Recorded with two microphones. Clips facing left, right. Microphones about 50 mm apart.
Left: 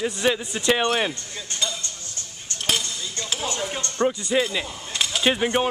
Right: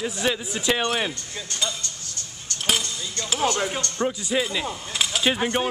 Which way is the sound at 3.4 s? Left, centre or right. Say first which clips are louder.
Right 7 dB; right.